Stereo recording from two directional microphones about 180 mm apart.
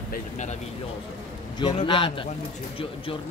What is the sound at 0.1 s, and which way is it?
Speech, 40° left (ahead or behind).